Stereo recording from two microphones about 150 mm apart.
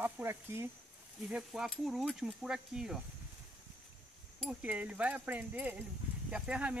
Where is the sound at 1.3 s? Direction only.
5° right (ahead or behind).